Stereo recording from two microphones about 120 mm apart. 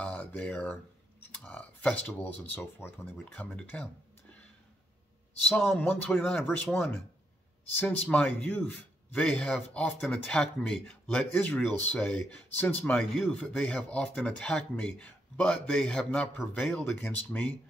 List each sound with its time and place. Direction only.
0.0 s a man's voice: 10° left (ahead or behind)
5.7 s a man's voice: 15° left (ahead or behind)